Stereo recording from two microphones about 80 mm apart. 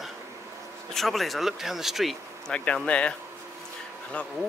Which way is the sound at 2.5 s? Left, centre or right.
Centre.